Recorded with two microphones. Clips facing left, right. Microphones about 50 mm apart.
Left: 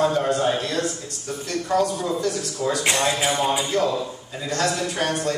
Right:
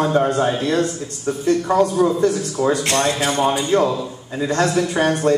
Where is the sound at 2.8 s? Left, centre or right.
Centre.